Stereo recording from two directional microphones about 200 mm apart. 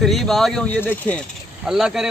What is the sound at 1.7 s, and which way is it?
Speech, 5° right (ahead or behind).